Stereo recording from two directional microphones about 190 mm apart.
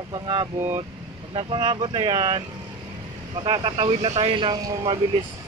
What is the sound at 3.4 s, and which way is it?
Speech, 25° right (ahead or behind).